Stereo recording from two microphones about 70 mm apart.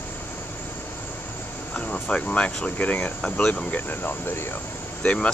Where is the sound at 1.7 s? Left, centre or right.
Centre; by 4.4 s left.